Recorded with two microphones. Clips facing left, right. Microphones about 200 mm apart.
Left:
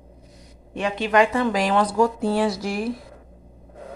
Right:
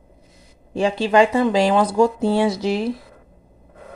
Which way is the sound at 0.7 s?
30° right (ahead or behind).